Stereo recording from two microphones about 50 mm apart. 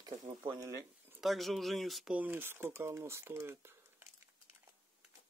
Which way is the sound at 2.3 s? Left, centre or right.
Right.